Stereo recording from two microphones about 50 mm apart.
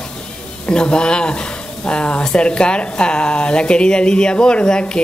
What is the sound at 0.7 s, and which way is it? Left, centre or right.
Speech, centre.